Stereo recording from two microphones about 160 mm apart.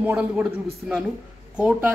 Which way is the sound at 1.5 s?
5° right (ahead or behind).